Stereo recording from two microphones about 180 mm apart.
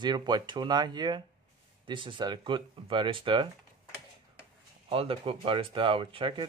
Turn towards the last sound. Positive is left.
turn(degrees=-30)  # may be behind; listen again after turning